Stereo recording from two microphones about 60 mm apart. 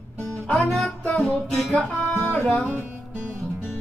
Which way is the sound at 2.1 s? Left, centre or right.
Left.